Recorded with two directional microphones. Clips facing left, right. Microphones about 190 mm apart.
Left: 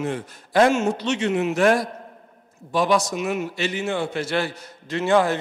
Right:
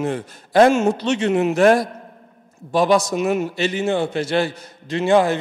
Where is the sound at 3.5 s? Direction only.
30° right (ahead or behind).